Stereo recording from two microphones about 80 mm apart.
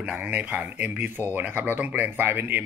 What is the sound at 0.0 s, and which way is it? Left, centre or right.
Speech, centre.